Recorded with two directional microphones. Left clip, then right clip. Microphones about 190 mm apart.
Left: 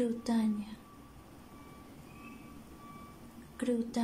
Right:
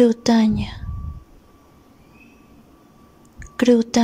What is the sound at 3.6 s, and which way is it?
Speech, 40° right (ahead or behind).